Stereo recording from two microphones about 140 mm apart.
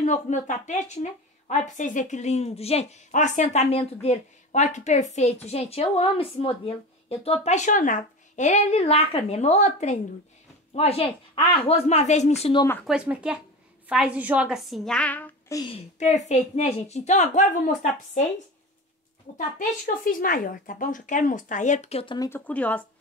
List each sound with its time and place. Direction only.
0.0 s a woman's voice: 60° left (ahead or behind)
12.8 s a woman's voice: 10° right (ahead or behind); by 15.5 s 10° left (ahead or behind)
15.7 s a woman's voice: 50° left (ahead or behind)
19.3 s speech: 70° left (ahead or behind)
20.1 s speech: 85° left; by 22.3 s 35° left (ahead or behind)
22.3 s speech: 10° left (ahead or behind)